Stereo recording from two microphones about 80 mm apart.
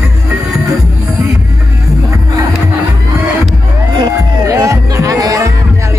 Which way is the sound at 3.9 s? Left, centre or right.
Right.